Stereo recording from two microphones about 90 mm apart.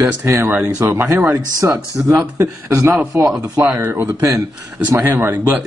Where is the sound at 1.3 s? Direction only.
40° right (ahead or behind).